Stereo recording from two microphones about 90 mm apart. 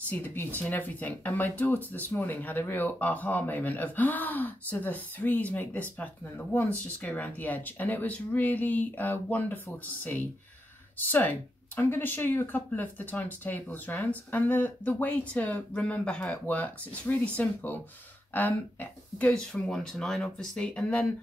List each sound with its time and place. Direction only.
0.1 s speech: 20° left (ahead or behind)
11.0 s speech: 20° left (ahead or behind)
19.5 s speech: 5° left (ahead or behind)